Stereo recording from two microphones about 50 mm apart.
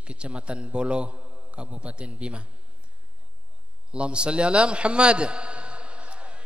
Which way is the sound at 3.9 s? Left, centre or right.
Right.